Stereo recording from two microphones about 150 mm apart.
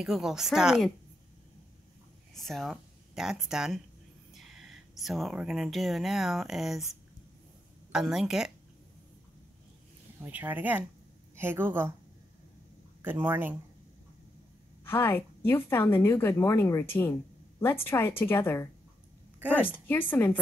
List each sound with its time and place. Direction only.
0.0 s a woman's voice: 5° right (ahead or behind)
2.3 s a woman's voice: centre (ahead or behind)
10.2 s speech: 10° right (ahead or behind)
13.0 s speech: 15° right (ahead or behind)
14.9 s speech: 15° left (ahead or behind)
19.9 s speech: 15° left (ahead or behind)